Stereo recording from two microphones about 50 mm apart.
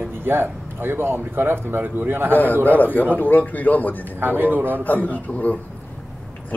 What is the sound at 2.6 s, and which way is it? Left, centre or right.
A man's voice, left.